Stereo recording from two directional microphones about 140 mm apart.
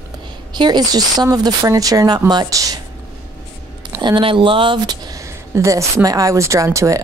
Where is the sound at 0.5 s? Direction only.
30° right (ahead or behind).